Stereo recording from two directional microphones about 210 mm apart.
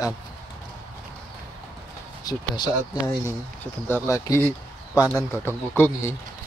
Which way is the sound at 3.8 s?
10° left (ahead or behind).